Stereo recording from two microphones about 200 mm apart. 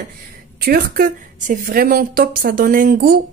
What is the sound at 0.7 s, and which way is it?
A woman's voice, 50° right (ahead or behind).